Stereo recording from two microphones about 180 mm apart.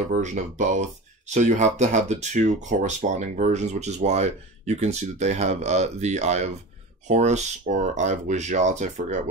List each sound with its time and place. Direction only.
0.1 s speech: 40° right (ahead or behind)